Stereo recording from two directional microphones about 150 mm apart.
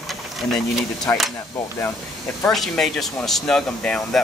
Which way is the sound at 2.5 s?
Centre (ahead or behind).